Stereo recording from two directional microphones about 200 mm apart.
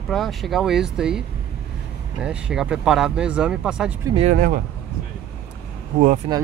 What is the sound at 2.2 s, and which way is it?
Speech, 5° right (ahead or behind).